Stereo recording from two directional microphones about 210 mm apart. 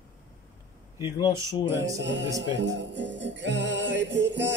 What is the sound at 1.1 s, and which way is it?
Speech, 20° left (ahead or behind).